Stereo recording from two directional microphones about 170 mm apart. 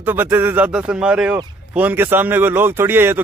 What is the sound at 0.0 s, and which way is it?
Speech, 10° right (ahead or behind).